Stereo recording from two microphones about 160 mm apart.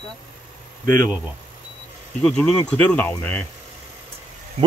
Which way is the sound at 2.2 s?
5° left (ahead or behind).